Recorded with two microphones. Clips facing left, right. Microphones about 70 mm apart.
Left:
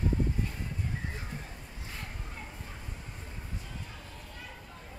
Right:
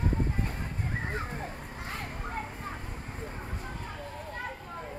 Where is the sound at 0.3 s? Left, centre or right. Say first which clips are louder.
Right 2 dB; right.